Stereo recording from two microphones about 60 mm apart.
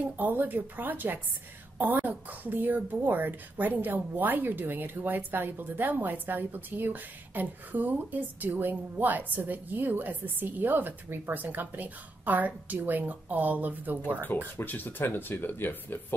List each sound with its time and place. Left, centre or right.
0.2 s speech: right
14.2 s speech: left